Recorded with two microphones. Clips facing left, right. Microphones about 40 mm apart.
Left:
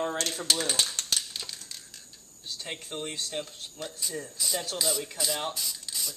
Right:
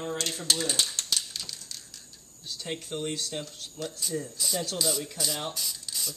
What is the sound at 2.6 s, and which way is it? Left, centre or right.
Speech, centre.